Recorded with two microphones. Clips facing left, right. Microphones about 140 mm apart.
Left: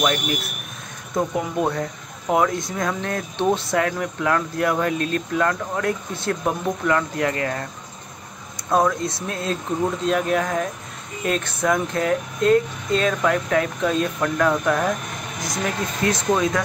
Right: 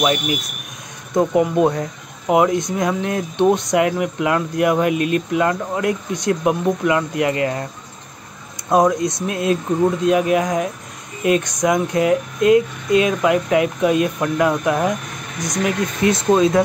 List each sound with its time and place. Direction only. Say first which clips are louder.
0.0 s speech: right 3 dB; 10° right (ahead or behind)
8.6 s speech: right 4 dB; 20° right (ahead or behind)